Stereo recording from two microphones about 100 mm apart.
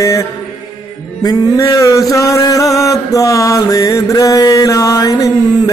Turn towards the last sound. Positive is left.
turn(degrees=35)  # may be behind; listen again after turning